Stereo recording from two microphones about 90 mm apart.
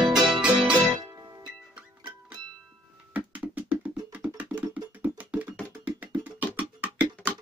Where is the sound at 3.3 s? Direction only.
15° right (ahead or behind).